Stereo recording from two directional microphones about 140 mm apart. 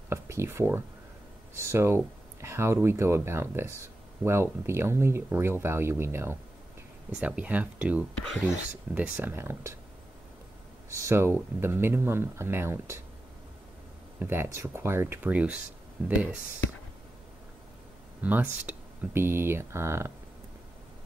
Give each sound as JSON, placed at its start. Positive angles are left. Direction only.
{"t": 0.1, "sound": "speech", "side_deg": -20}
{"t": 10.9, "sound": "speech", "side_deg": -20}
{"t": 14.2, "sound": "speech", "side_deg": -15}
{"t": 18.2, "sound": "speech", "side_deg": -10}